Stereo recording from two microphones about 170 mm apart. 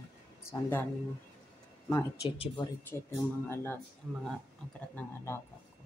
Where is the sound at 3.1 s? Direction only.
15° left (ahead or behind).